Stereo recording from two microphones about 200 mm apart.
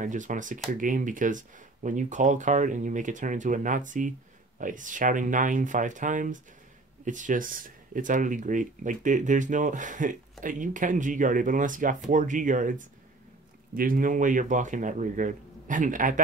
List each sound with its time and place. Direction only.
0.0 s speech: 40° right (ahead or behind)